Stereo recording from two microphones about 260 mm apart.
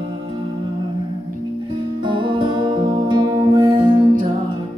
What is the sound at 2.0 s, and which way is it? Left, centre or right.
Music, centre.